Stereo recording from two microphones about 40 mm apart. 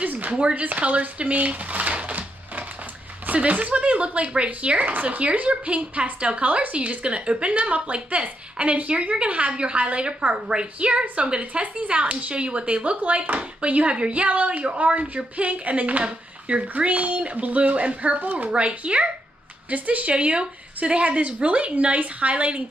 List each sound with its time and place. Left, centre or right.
0.0 s speech: right
0.3 s a woman's voice: right
0.7 s a sound: right
3.3 s a woman's voice: right